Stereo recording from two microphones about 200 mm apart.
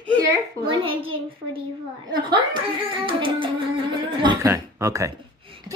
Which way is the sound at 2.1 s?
20° right (ahead or behind).